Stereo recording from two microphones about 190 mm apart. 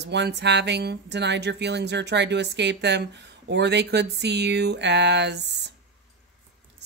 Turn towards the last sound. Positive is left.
turn(degrees=-65)  # may be behind; listen again after turning